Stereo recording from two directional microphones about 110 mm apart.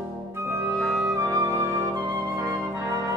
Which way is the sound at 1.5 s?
25° right (ahead or behind).